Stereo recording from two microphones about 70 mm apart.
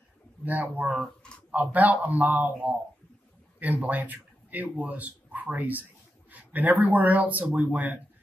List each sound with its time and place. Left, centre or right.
0.5 s speech: right